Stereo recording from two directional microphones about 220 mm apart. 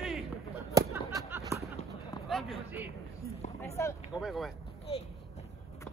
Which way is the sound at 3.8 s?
10° left (ahead or behind).